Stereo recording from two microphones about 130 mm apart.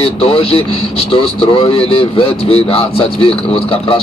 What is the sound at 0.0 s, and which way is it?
A man's voice, 45° left (ahead or behind).